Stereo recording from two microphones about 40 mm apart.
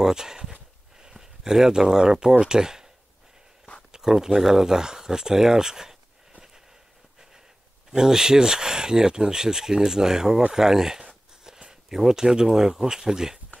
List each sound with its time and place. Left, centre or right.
0.0 s a sound: centre
1.1 s speech: centre
3.9 s speech: centre
7.9 s speech: centre